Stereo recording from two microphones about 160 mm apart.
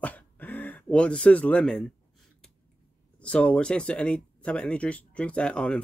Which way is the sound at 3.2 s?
5° left (ahead or behind).